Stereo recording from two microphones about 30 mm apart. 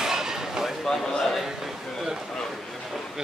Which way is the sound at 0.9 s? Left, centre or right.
Centre.